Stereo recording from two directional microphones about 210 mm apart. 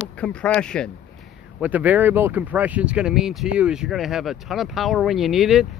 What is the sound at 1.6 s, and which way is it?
Speech, 5° right (ahead or behind).